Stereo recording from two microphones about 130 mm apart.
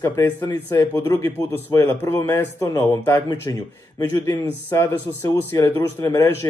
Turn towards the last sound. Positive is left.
turn(degrees=25)  # may be behind; listen again after turning